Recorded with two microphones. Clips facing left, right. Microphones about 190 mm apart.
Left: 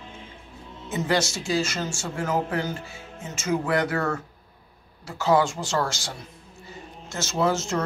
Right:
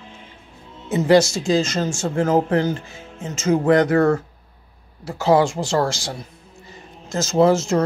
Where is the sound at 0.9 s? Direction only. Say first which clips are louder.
Right 10 dB; 30° right (ahead or behind).